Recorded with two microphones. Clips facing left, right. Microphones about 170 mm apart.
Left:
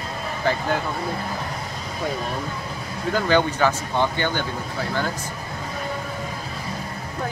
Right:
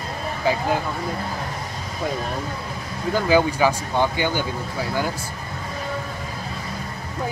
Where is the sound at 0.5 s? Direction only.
10° right (ahead or behind).